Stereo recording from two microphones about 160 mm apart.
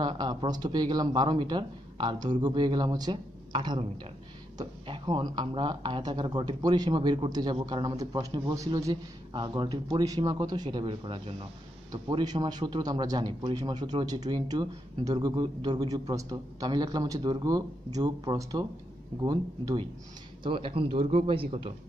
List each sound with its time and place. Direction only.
0.0 s a man's voice: 30° right (ahead or behind)